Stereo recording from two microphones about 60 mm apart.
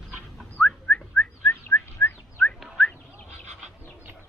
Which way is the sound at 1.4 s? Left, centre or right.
Left.